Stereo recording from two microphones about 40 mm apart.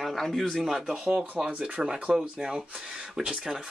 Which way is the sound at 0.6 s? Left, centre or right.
Centre.